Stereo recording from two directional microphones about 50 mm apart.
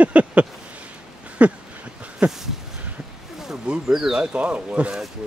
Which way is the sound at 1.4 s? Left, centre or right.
Right.